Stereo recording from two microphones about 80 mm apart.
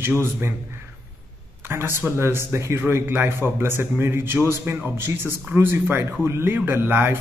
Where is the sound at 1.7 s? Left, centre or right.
Right.